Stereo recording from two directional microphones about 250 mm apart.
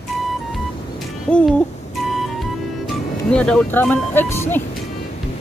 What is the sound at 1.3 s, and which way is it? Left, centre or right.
Hoot, centre.